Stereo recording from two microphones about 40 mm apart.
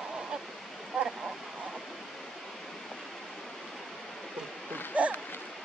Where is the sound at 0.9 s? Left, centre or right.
Centre.